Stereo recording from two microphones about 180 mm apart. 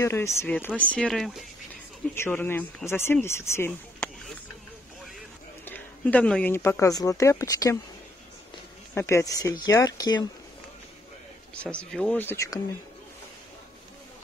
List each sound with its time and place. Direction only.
0.0 s speech: 15° left (ahead or behind)
2.1 s speech: 10° left (ahead or behind)
5.7 s speech: 10° left (ahead or behind)
8.9 s speech: 15° left (ahead or behind)
11.6 s speech: 5° left (ahead or behind)